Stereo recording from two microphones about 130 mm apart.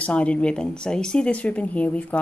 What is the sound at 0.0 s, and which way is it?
Speech, 10° left (ahead or behind).